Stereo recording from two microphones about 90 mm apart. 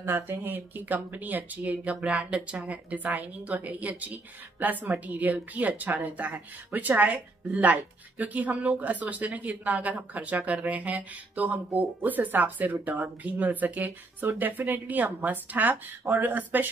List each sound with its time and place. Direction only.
0.0 s speech: 25° right (ahead or behind)